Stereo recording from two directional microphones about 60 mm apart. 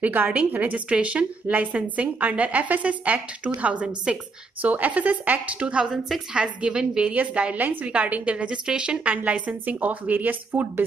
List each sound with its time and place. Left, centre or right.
0.0 s a woman's voice: right
7.5 s a woman's voice: right